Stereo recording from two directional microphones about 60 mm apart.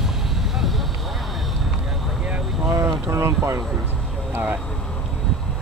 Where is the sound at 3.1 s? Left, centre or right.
Right.